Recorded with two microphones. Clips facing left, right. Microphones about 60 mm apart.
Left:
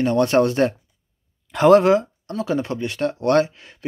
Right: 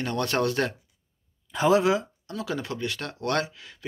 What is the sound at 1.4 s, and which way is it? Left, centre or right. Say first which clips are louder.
Speech: left 8 dB; left.